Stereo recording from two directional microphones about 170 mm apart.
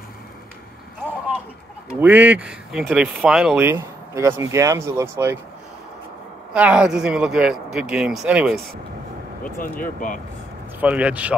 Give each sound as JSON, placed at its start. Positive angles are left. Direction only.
{"t": 2.0, "sound": "speech", "side_deg": -10}
{"t": 3.6, "sound": "speech", "side_deg": -15}
{"t": 6.5, "sound": "speech", "side_deg": -5}
{"t": 9.4, "sound": "speech", "side_deg": 55}
{"t": 10.8, "sound": "speech", "side_deg": -10}